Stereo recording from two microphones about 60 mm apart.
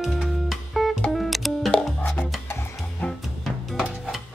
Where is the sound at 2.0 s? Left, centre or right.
Left.